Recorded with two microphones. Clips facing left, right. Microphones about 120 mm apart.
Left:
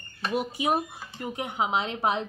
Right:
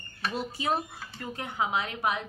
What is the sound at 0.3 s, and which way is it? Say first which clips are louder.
Speech: left 4 dB; 15° left (ahead or behind).